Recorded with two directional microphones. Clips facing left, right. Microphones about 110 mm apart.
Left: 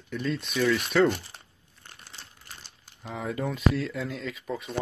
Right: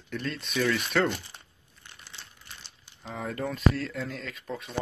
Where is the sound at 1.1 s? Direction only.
40° left (ahead or behind).